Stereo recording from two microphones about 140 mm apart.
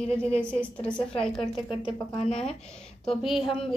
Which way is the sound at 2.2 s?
50° left (ahead or behind).